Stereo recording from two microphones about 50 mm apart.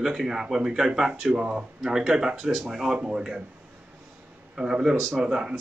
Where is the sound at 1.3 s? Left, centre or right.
Right.